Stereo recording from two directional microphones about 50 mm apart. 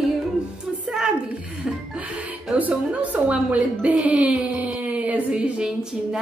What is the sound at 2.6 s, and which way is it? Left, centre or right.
A woman's voice, right.